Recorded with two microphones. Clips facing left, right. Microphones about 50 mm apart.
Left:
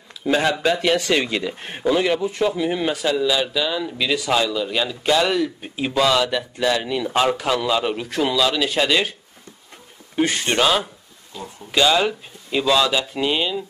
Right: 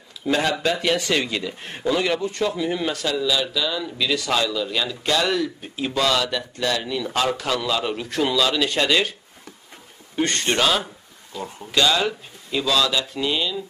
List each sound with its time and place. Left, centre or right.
0.2 s speech: centre
10.1 s speech: centre; by 13.6 s left